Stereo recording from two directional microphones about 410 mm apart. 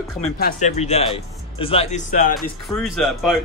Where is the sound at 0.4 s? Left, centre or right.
Centre.